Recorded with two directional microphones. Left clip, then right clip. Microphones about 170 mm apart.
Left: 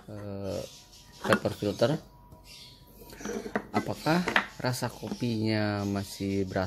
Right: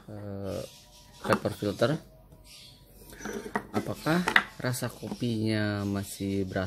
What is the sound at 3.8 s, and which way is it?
Speech, centre (ahead or behind).